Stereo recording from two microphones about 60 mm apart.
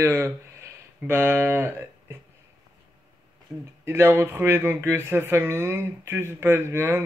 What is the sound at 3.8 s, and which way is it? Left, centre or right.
Speech, right.